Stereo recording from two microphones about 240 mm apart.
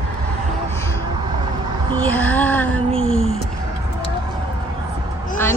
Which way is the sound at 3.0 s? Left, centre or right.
Left.